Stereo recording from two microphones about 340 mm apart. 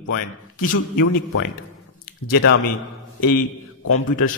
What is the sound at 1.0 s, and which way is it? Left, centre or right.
Speech, left.